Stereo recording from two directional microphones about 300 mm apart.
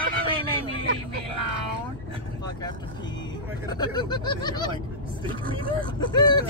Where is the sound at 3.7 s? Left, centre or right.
Centre.